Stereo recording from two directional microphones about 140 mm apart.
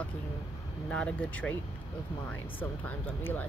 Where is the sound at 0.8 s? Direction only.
10° left (ahead or behind).